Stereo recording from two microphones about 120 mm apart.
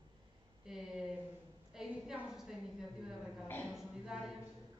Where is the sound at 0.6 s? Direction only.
5° right (ahead or behind).